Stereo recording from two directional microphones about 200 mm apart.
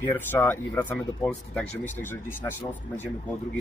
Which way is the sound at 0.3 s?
10° left (ahead or behind).